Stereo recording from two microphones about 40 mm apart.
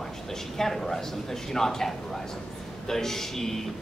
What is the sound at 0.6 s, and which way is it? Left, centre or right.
Speech, centre.